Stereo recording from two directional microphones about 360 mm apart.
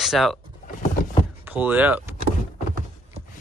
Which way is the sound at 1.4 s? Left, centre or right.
Centre.